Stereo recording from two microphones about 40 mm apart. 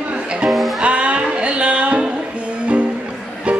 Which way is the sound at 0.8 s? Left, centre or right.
Right.